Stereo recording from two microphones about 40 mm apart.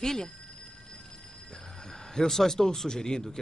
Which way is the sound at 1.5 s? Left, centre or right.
Centre.